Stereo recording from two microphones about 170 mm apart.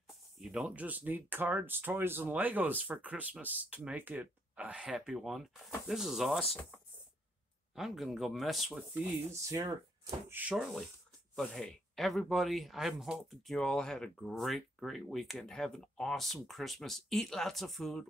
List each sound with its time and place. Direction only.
0.4 s speech: centre (ahead or behind)
7.7 s speech: centre (ahead or behind); by 9.8 s 15° right (ahead or behind)
10.3 s speech: 5° right (ahead or behind)